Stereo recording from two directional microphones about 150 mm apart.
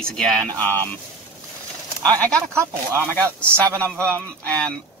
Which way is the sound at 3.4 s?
15° right (ahead or behind).